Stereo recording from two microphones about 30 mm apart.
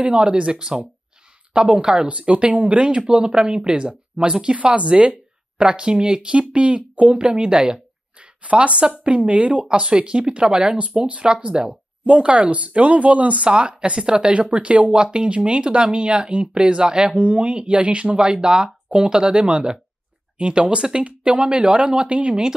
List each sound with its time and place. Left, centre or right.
0.0 s speech: right
2.0 s speech: right
2.8 s speech: right
6.3 s speech: right
7.2 s speech: right
8.2 s speech: right
11.0 s speech: right
11.2 s speech: right
13.5 s speech: right
15.0 s speech: right
17.2 s speech: right
18.1 s speech: right